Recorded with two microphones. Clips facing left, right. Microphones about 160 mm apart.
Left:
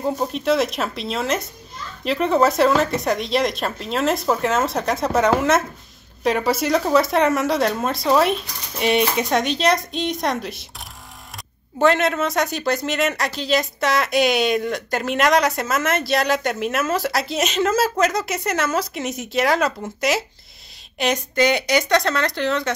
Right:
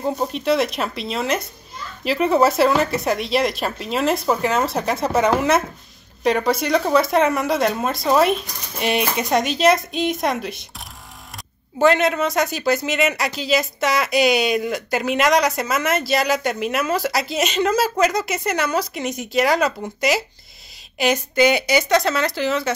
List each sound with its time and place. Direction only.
0.0 s speech: centre (ahead or behind)